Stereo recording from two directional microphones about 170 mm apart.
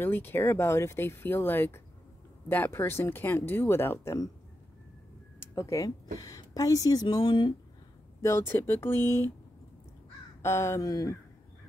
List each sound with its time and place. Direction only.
0.0 s speech: 10° left (ahead or behind)
5.5 s speech: 20° left (ahead or behind)
8.2 s speech: 15° left (ahead or behind)
10.4 s speech: 15° left (ahead or behind)